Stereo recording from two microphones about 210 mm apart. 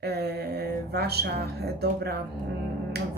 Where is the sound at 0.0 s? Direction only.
50° right (ahead or behind).